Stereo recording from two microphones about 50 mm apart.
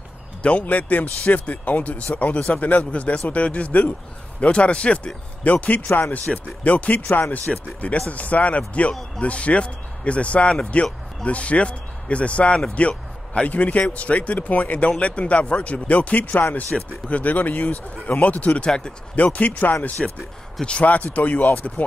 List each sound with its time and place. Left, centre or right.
0.4 s speech: left